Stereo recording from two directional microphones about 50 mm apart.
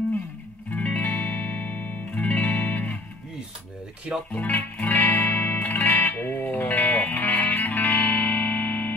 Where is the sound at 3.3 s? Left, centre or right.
Centre.